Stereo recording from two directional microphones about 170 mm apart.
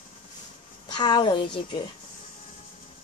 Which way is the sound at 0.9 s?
25° left (ahead or behind).